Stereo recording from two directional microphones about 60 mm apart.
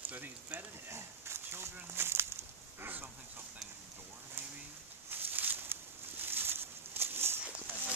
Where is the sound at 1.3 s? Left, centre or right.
Right.